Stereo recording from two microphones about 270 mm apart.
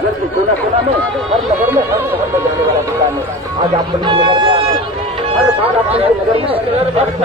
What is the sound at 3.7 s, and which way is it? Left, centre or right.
Speech, centre.